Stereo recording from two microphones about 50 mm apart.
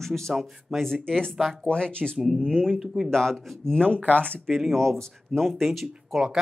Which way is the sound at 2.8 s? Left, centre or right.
Centre.